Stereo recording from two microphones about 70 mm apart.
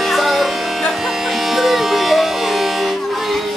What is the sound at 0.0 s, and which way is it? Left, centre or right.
Music, centre.